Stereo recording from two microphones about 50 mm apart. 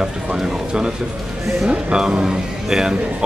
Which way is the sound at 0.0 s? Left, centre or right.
Centre.